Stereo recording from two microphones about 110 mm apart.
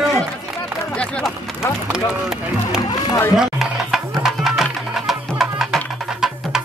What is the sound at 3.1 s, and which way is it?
Speech, 25° left (ahead or behind).